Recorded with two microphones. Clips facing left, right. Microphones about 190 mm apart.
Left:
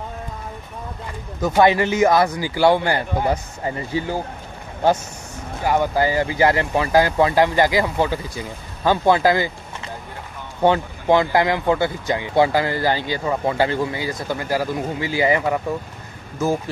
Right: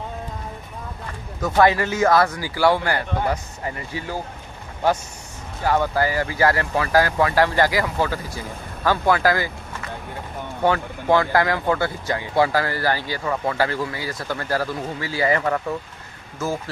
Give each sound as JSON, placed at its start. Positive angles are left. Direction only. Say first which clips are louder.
{"t": 1.4, "sound": "speech", "louder": "left 2 dB", "side_deg": 20}
{"t": 5.6, "sound": "speech", "louder": "left 1 dB", "side_deg": 15}